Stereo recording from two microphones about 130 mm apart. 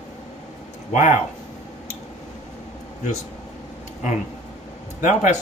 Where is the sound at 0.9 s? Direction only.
70° left (ahead or behind).